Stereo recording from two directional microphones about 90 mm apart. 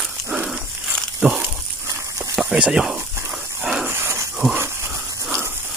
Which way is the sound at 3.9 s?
30° right (ahead or behind).